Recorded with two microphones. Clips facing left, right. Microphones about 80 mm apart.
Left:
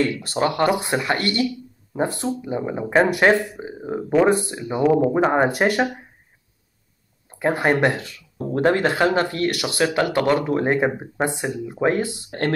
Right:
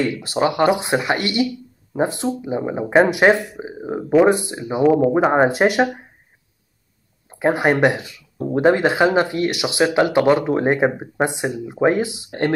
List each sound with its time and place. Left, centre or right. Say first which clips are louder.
0.0 s speech: right 2 dB; centre
4.8 s speech: right 3 dB; centre
5.1 s speech: right 3 dB; centre
7.2 s speech: right 2 dB; centre